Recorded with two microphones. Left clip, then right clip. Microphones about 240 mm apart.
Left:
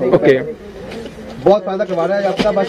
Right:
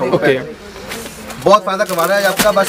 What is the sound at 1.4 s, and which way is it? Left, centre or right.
Speech, right.